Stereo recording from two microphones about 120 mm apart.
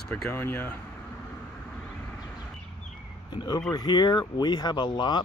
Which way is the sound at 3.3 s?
40° left (ahead or behind).